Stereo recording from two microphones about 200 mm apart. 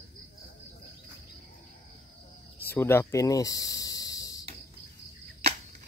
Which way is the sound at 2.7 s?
10° left (ahead or behind).